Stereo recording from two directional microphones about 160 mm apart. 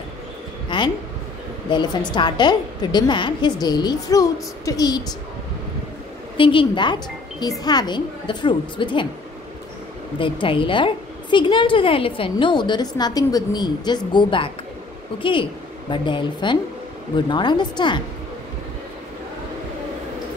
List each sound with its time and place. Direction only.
0.7 s a sound: 30° left (ahead or behind)
1.7 s a woman's voice: 30° left (ahead or behind)
6.3 s a woman's voice: 30° left (ahead or behind)
10.1 s a woman's voice: 30° left (ahead or behind)
15.9 s a woman's voice: 30° left (ahead or behind)